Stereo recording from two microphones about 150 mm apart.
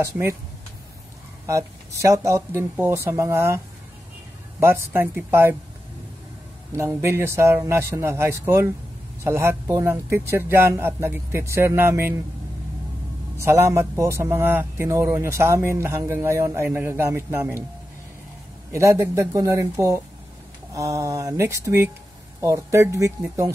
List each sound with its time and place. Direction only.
0.0 s speech: 15° right (ahead or behind)
1.4 s speech: 20° right (ahead or behind)
6.8 s speech: 20° right (ahead or behind)
13.4 s speech: 20° right (ahead or behind)
18.7 s speech: 20° right (ahead or behind)